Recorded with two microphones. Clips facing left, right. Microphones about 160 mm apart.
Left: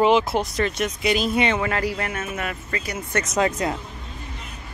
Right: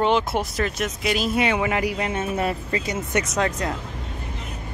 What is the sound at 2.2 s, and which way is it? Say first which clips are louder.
Speech: right 5 dB; 30° right (ahead or behind).